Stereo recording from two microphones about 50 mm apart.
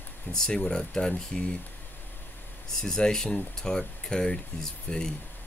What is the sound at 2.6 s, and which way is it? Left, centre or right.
Speech, centre.